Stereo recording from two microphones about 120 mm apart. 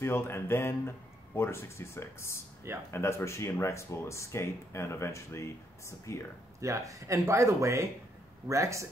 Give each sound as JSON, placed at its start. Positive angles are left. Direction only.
{"t": 0.0, "sound": "speech", "side_deg": 20}
{"t": 6.6, "sound": "speech", "side_deg": -25}